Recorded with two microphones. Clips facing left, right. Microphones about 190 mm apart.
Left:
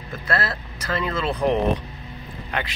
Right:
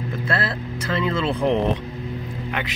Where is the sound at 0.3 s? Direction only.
25° right (ahead or behind).